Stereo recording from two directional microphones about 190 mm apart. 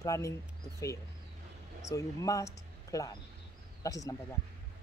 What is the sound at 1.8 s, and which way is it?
Speech, 15° left (ahead or behind).